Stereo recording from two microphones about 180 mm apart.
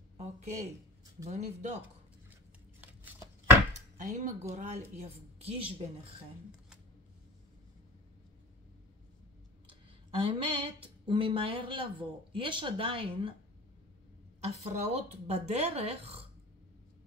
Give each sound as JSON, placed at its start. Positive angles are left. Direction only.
{"t": 0.2, "sound": "a woman's voice", "side_deg": -40}
{"t": 2.8, "sound": "a sound", "side_deg": -10}
{"t": 4.0, "sound": "a woman's voice", "side_deg": -40}
{"t": 10.1, "sound": "speech", "side_deg": -30}
{"t": 14.4, "sound": "a woman's voice", "side_deg": -40}